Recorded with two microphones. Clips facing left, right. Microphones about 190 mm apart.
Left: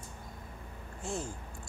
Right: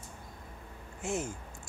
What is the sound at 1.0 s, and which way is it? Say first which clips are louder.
Speech: right 3 dB; 20° right (ahead or behind).